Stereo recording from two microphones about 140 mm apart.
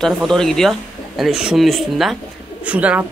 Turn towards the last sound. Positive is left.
turn(degrees=-10)  # may be behind; listen again after turning